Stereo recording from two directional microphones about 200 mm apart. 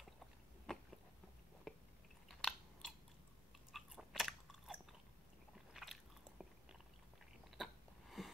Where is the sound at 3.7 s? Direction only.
Centre (ahead or behind).